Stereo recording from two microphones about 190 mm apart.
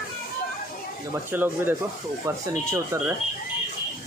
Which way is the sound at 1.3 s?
10° right (ahead or behind).